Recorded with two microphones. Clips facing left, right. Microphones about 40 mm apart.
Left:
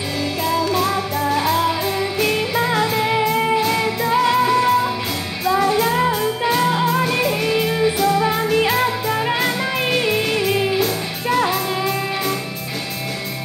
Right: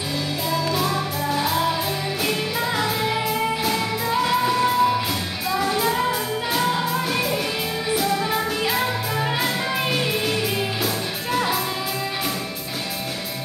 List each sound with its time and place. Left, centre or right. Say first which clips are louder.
0.5 s music: left 4 dB; centre
3.0 s music: left 5 dB; left; by 5.9 s centre
5.9 s music: left 4 dB; centre